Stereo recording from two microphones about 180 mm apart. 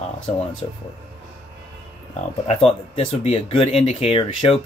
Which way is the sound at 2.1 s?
35° left (ahead or behind).